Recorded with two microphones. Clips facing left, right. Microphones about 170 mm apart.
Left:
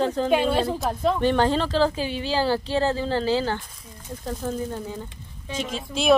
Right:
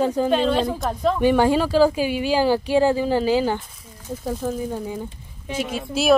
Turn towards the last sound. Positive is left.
turn(degrees=-5)  # may be behind; listen again after turning